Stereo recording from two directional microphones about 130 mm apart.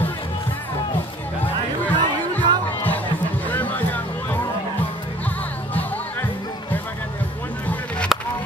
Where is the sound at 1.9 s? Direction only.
15° left (ahead or behind).